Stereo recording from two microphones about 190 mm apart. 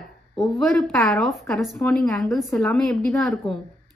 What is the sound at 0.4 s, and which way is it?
A woman's voice, centre (ahead or behind).